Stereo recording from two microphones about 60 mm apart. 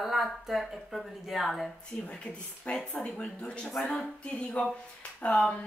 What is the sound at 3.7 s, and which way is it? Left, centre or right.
Speech, centre.